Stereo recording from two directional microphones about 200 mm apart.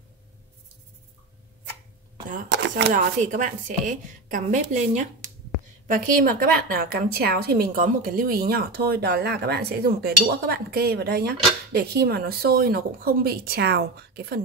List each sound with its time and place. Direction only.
2.9 s a woman's voice: 40° right (ahead or behind)